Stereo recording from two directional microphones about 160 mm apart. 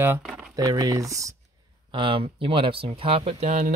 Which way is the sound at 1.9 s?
30° right (ahead or behind).